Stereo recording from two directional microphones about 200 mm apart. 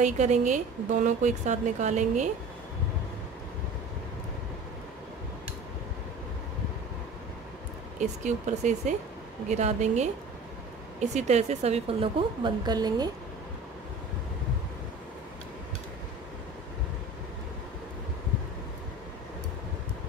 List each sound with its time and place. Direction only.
0.0 s a woman's voice: 35° right (ahead or behind)
8.0 s a woman's voice: 35° right (ahead or behind); by 13.1 s 20° right (ahead or behind)